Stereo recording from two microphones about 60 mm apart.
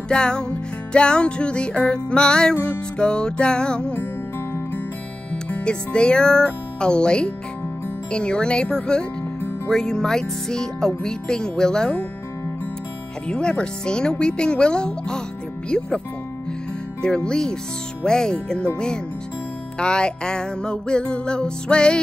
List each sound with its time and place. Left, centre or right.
0.1 s music: centre
5.3 s music: centre
13.3 s music: centre
17.0 s music: centre
19.8 s music: centre